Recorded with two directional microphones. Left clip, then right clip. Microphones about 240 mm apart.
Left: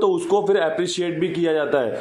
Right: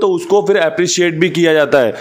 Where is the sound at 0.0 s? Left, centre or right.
Right.